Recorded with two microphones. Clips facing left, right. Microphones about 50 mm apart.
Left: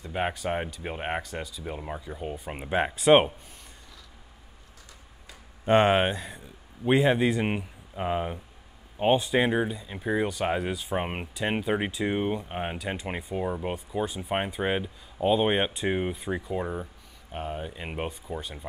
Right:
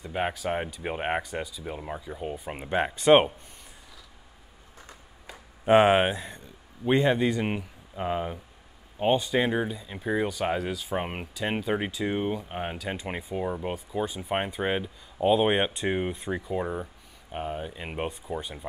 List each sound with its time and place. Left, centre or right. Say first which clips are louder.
0.1 s speech: even; centre
0.7 s speech: right 3 dB; centre
1.6 s speech: even; centre
4.8 s a sound: right 5 dB; right
5.7 s a man's voice: right 2 dB; centre